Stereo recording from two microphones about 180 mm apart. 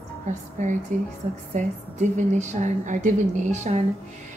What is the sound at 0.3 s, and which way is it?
A woman's voice, 45° right (ahead or behind).